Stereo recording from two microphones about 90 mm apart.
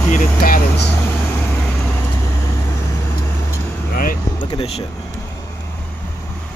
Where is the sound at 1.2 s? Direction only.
25° left (ahead or behind).